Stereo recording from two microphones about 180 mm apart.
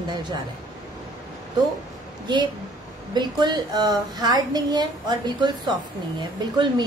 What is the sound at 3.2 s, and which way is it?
A woman's voice, 25° right (ahead or behind).